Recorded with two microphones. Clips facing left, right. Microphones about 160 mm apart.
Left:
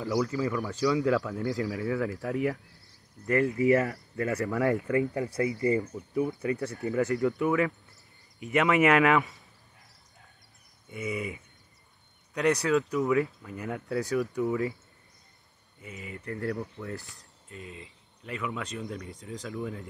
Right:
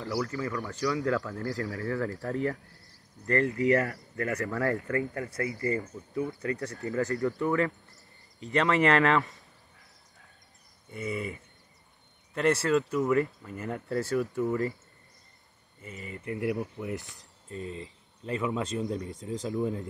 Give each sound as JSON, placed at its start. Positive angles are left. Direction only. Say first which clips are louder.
{"t": 0.0, "sound": "speech", "louder": "left 4 dB", "side_deg": 15}
{"t": 10.9, "sound": "speech", "louder": "even", "side_deg": 0}
{"t": 12.6, "sound": "speech", "louder": "even", "side_deg": 0}
{"t": 15.8, "sound": "speech", "louder": "even", "side_deg": 0}
{"t": 16.3, "sound": "speech", "louder": "right 2 dB", "side_deg": -15}
{"t": 17.5, "sound": "speech", "louder": "right 6 dB", "side_deg": -35}